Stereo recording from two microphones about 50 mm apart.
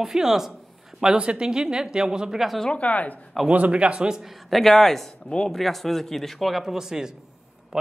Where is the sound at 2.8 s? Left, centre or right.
Left.